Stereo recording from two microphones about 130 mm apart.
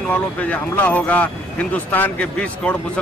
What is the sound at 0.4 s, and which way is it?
A man's voice, 10° left (ahead or behind).